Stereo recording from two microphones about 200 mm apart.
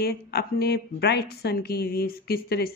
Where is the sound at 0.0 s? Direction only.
55° left (ahead or behind).